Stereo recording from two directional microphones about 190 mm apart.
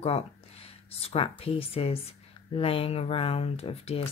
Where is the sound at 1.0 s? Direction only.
30° left (ahead or behind).